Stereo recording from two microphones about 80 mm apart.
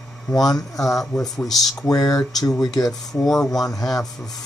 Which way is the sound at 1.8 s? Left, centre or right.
Left.